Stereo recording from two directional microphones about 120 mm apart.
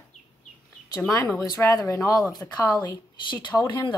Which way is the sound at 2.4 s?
10° left (ahead or behind).